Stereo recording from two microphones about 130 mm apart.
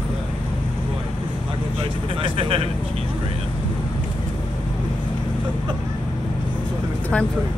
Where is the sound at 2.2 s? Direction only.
45° right (ahead or behind).